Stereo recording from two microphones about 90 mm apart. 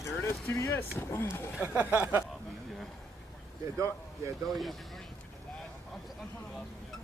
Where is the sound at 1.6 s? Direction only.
20° right (ahead or behind).